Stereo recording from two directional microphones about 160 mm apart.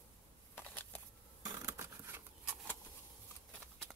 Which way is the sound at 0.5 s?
10° left (ahead or behind).